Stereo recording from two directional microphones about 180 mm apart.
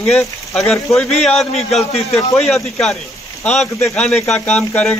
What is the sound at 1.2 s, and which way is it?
Speech, 5° left (ahead or behind).